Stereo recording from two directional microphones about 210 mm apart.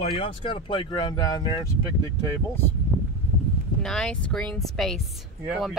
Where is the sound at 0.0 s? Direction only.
25° left (ahead or behind).